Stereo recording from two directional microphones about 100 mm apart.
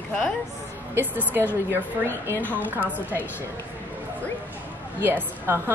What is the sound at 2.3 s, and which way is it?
Speech, 20° left (ahead or behind).